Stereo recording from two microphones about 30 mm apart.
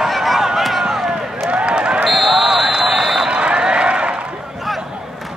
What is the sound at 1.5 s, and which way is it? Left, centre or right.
Run, right.